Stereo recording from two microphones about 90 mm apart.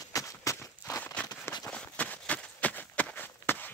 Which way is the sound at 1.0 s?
15° left (ahead or behind).